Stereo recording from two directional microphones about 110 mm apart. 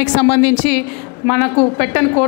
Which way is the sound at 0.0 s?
20° left (ahead or behind).